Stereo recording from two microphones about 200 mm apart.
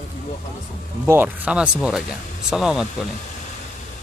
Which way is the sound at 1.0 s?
10° right (ahead or behind).